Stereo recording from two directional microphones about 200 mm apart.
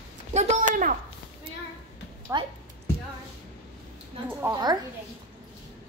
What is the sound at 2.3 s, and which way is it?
Speech, 20° right (ahead or behind).